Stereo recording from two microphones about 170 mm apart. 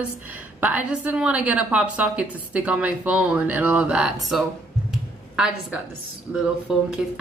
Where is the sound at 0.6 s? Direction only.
10° right (ahead or behind).